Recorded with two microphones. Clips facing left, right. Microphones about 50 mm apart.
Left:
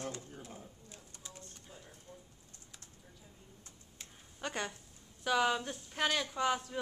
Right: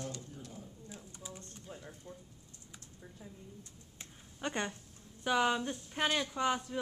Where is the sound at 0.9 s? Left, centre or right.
Centre.